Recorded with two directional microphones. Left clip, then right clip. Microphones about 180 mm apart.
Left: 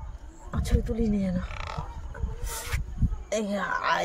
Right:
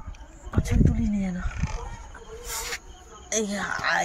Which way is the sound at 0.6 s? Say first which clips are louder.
Right 2 dB; 65° left (ahead or behind).